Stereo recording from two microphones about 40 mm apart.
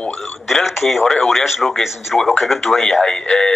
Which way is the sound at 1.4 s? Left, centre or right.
Centre.